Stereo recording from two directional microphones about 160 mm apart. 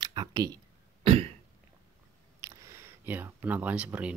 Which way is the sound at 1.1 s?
40° right (ahead or behind).